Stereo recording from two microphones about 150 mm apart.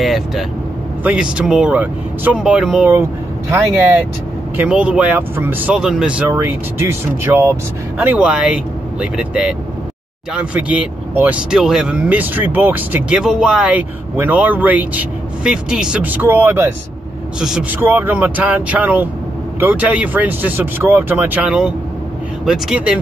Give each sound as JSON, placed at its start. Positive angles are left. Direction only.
{"t": 0.0, "sound": "speech", "side_deg": 0}
{"t": 2.9, "sound": "speech", "side_deg": -15}
{"t": 4.6, "sound": "speech", "side_deg": -5}
{"t": 17.4, "sound": "speech", "side_deg": -5}